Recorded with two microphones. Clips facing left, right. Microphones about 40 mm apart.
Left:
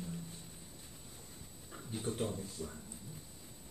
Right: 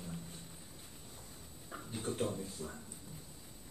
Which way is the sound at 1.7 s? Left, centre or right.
Centre.